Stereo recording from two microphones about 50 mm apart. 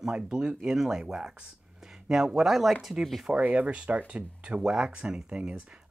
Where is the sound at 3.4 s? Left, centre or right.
Right.